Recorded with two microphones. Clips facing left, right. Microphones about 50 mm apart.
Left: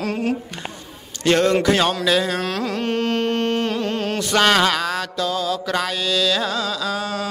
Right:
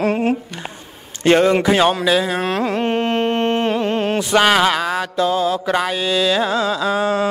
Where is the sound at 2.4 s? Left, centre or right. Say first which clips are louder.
Right 4 dB; right.